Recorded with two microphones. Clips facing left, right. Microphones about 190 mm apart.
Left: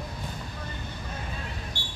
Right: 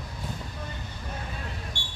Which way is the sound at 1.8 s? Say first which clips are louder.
Left 2 dB; 40° left (ahead or behind).